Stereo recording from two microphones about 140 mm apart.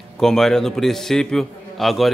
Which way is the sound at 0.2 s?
5° left (ahead or behind).